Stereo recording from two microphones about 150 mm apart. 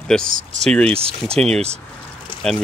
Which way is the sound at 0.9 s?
40° right (ahead or behind).